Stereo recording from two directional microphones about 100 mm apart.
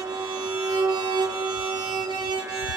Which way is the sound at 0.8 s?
40° right (ahead or behind).